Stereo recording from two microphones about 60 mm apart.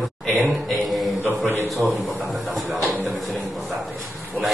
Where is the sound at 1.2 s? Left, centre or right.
Right.